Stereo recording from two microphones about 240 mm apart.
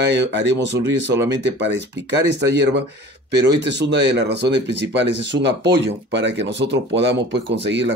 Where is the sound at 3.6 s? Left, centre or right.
Right.